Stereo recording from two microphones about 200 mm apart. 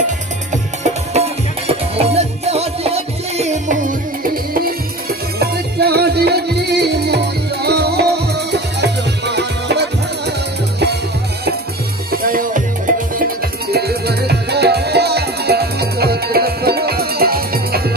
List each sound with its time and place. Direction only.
1.1 s music: 35° right (ahead or behind); by 10.3 s 55° right (ahead or behind)
12.1 s music: 45° right (ahead or behind)
13.7 s music: 55° right (ahead or behind)